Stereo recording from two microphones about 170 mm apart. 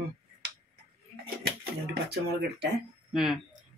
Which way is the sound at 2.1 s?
75° right (ahead or behind).